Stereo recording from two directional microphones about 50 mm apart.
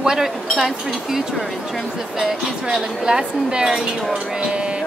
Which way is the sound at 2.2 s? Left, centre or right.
Centre.